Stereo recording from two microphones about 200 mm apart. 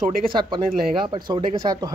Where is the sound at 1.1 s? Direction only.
25° right (ahead or behind).